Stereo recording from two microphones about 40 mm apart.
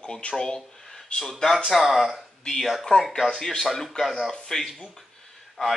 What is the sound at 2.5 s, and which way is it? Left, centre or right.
A man's voice, centre.